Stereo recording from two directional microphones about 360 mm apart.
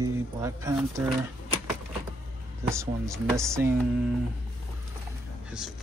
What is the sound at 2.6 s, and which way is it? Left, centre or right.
Speech, centre.